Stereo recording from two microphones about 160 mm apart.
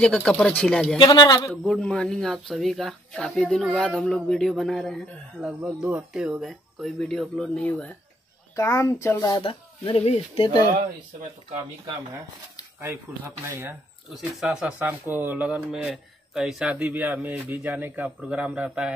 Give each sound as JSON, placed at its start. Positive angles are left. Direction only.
{"t": 0.0, "sound": "speech", "side_deg": 5}
{"t": 0.9, "sound": "speech", "side_deg": 30}
{"t": 1.5, "sound": "speech", "side_deg": 0}
{"t": 8.5, "sound": "speech", "side_deg": 20}
{"t": 9.4, "sound": "speech", "side_deg": 35}
{"t": 14.1, "sound": "speech", "side_deg": 0}